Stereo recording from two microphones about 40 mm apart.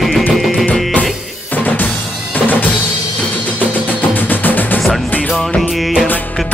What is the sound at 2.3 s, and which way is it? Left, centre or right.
Drum, left.